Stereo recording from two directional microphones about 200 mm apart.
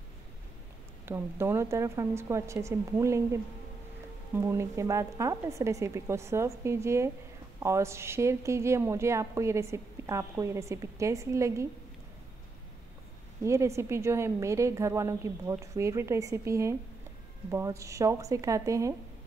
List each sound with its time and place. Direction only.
1.0 s a woman's voice: 10° right (ahead or behind)
4.4 s a woman's voice: 15° right (ahead or behind)
13.4 s a woman's voice: 15° right (ahead or behind)